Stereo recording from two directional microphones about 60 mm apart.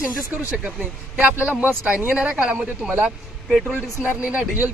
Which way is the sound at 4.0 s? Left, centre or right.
Right.